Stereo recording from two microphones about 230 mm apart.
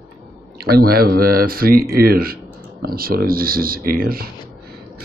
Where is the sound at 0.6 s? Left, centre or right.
Right.